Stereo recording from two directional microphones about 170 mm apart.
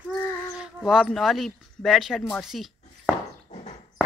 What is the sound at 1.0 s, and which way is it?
Speech, centre (ahead or behind).